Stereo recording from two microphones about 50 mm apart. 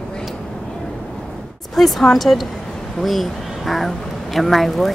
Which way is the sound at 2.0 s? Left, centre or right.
Centre.